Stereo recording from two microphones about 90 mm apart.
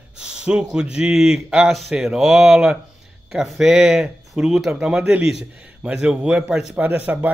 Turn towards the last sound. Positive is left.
turn(degrees=-20)  # may be behind; listen again after turning